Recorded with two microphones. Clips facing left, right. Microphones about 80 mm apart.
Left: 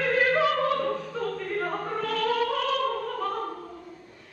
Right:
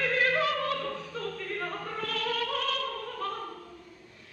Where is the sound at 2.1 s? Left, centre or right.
Left.